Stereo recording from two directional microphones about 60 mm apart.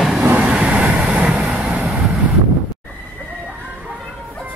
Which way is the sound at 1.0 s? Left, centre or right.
Centre.